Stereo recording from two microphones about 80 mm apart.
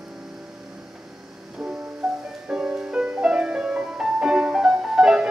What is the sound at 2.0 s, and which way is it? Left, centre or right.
Music, centre.